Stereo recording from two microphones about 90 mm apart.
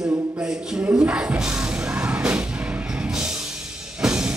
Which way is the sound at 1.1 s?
15° right (ahead or behind).